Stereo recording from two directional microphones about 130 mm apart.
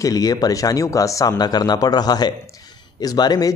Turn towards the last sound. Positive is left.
turn(degrees=30)  # may be behind; listen again after turning